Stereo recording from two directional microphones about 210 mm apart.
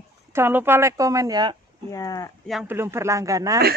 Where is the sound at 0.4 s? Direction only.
10° right (ahead or behind).